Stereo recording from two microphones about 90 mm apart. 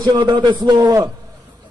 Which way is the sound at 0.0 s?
55° right (ahead or behind).